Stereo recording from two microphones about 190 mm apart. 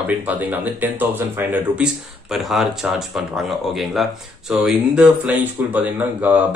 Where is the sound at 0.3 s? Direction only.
10° right (ahead or behind).